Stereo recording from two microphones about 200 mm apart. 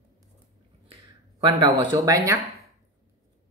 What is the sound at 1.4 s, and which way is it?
Speech, 20° right (ahead or behind).